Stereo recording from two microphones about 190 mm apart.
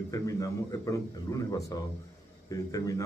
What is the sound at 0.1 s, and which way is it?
A man's voice, 15° left (ahead or behind).